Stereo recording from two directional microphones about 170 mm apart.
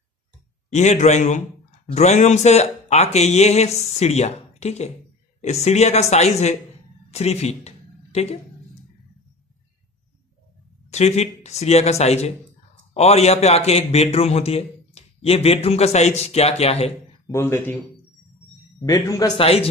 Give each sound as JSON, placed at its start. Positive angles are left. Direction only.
{"t": 0.7, "sound": "a man's voice", "side_deg": 45}
{"t": 10.9, "sound": "a man's voice", "side_deg": 40}
{"t": 17.3, "sound": "speech", "side_deg": 15}
{"t": 18.9, "sound": "speech", "side_deg": 20}
{"t": 19.4, "sound": "a man's voice", "side_deg": 35}